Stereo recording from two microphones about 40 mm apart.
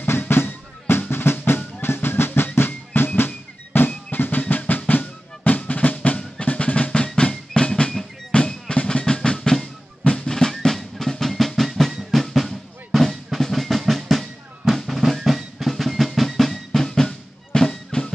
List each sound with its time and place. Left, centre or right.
0.0 s music: left
1.1 s drum: left
10.3 s drum: centre